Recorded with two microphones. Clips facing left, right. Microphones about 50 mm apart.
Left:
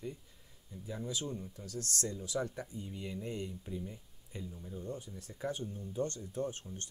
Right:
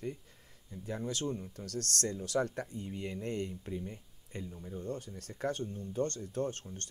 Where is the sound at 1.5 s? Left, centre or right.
Right.